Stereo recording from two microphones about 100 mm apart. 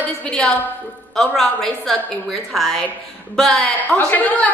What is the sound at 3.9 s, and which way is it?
Speech, 15° left (ahead or behind).